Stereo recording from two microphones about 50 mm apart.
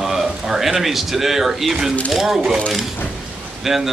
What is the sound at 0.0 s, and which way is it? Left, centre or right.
Speech, centre.